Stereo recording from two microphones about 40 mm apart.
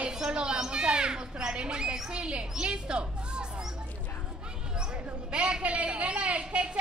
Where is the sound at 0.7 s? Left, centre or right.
Right.